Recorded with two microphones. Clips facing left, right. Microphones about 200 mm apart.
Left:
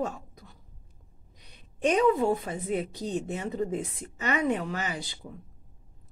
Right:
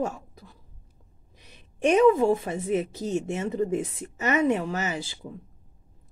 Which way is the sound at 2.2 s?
25° right (ahead or behind).